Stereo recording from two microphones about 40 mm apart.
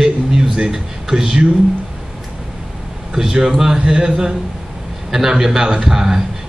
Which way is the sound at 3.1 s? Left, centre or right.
Centre.